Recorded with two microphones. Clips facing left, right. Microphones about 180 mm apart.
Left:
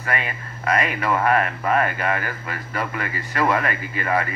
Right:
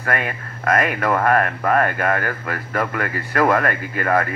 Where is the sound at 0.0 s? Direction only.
50° right (ahead or behind).